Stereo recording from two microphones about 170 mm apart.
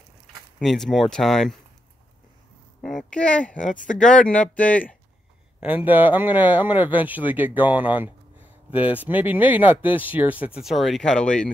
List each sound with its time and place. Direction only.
0.6 s speech: centre (ahead or behind)
2.8 s speech: centre (ahead or behind)
3.5 s speech: 50° left (ahead or behind)
4.1 s speech: 5° left (ahead or behind)
5.9 s speech: 10° right (ahead or behind); by 11.5 s 5° left (ahead or behind)